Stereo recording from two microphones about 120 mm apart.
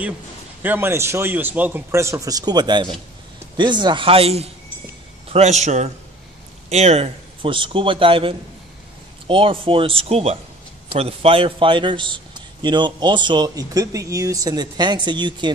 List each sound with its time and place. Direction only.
0.6 s a man's voice: 15° right (ahead or behind); by 4.5 s 55° right (ahead or behind)
5.3 s a man's voice: 65° right (ahead or behind); by 15.5 s 40° right (ahead or behind)